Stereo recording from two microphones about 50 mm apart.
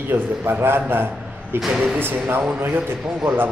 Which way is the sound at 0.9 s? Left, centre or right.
Right.